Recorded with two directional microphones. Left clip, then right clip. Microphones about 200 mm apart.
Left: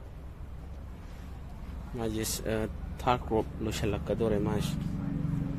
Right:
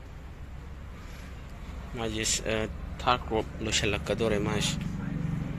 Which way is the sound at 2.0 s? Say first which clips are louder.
Right 3 dB; 25° left (ahead or behind).